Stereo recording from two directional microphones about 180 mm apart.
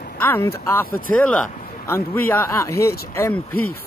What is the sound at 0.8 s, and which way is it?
Speech, 55° left (ahead or behind).